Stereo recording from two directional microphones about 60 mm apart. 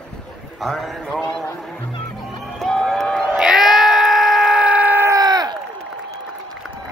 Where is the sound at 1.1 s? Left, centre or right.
Centre.